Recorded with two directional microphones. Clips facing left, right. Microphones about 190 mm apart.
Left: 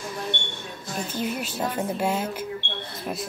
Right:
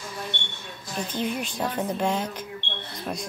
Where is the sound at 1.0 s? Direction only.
5° left (ahead or behind).